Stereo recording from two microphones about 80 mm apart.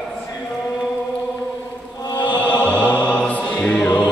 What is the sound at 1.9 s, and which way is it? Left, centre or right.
Chant, left.